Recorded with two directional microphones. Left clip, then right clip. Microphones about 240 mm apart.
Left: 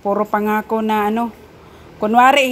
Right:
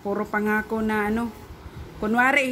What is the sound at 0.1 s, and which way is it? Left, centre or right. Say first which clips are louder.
A woman's voice: left 7 dB; centre.